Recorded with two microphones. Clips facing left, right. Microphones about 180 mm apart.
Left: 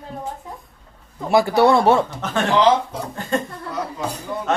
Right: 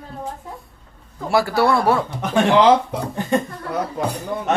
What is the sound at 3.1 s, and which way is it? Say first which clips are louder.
Speech: right 3 dB; 15° right (ahead or behind).